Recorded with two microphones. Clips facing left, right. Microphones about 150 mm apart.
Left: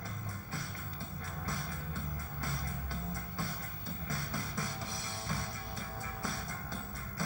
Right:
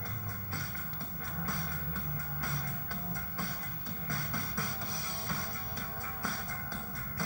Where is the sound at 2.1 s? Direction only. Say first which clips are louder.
Right 1 dB; 25° left (ahead or behind).